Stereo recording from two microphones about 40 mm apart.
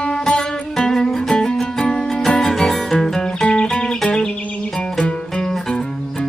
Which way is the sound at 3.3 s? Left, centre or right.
Left.